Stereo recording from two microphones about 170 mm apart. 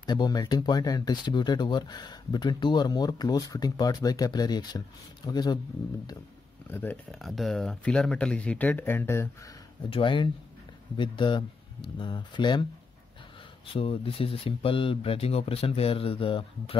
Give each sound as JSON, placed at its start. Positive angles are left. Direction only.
{"t": 0.0, "sound": "speech", "side_deg": 25}
{"t": 6.7, "sound": "speech", "side_deg": 10}
{"t": 9.8, "sound": "speech", "side_deg": 30}
{"t": 13.7, "sound": "speech", "side_deg": 35}